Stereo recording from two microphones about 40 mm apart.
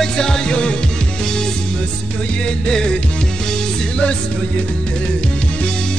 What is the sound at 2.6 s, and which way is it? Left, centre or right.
Music, centre.